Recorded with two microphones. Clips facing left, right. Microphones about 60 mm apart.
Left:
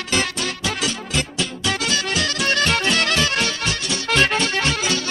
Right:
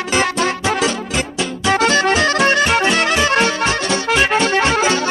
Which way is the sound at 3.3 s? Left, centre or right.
Right.